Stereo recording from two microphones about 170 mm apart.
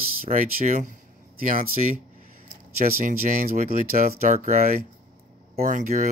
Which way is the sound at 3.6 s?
50° right (ahead or behind).